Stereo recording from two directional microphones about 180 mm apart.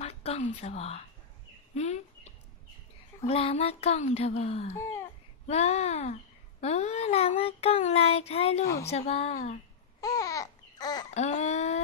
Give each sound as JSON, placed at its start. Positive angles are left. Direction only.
{"t": 0.0, "sound": "a woman's voice", "side_deg": 35}
{"t": 1.8, "sound": "a sound", "side_deg": 40}
{"t": 4.7, "sound": "speech", "side_deg": 15}
{"t": 5.5, "sound": "a sound", "side_deg": 35}
{"t": 9.9, "sound": "babbling", "side_deg": 20}
{"t": 11.1, "sound": "babbling", "side_deg": 40}